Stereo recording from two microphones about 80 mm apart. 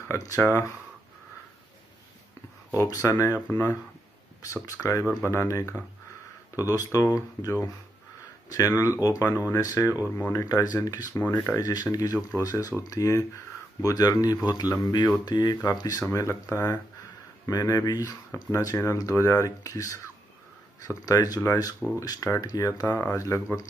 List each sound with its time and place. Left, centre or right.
0.2 s speech: left
2.7 s speech: left
4.6 s speech: left
11.1 s speech: left
11.5 s speech: left
17.5 s speech: left
22.8 s speech: left
23.1 s speech: left